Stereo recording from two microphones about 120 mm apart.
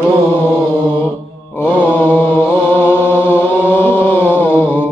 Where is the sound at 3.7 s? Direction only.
20° left (ahead or behind).